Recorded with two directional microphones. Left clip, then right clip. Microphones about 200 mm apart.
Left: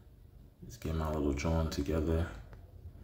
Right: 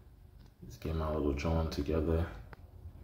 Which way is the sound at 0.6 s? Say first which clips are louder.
Right 1 dB; 20° left (ahead or behind).